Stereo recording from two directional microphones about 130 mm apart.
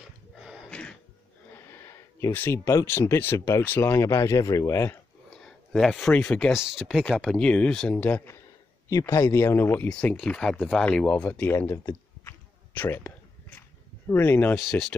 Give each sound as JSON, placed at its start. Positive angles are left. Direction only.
{"t": 0.4, "sound": "a sound", "side_deg": -5}
{"t": 0.7, "sound": "throat clearing", "side_deg": 10}
{"t": 1.7, "sound": "speech", "side_deg": 20}
{"t": 5.3, "sound": "speech", "side_deg": 5}
{"t": 6.5, "sound": "speech", "side_deg": -5}
{"t": 8.8, "sound": "speech", "side_deg": 25}
{"t": 12.3, "sound": "a sound", "side_deg": 15}
{"t": 14.5, "sound": "speech", "side_deg": 0}